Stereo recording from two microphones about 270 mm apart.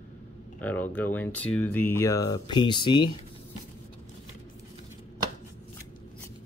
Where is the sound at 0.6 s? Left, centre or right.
Centre.